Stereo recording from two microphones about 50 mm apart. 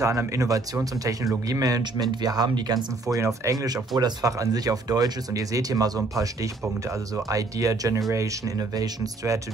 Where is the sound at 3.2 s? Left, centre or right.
Right.